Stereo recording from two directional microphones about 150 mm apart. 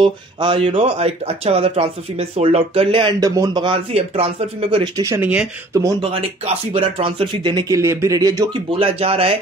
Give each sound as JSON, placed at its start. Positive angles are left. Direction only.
{"t": 0.0, "sound": "speech", "side_deg": -35}
{"t": 3.2, "sound": "speech", "side_deg": -25}
{"t": 5.0, "sound": "speech", "side_deg": -20}
{"t": 6.0, "sound": "speech", "side_deg": -40}
{"t": 8.7, "sound": "speech", "side_deg": -40}